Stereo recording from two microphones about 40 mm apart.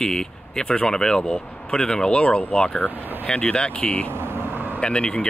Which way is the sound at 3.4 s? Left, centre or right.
Left.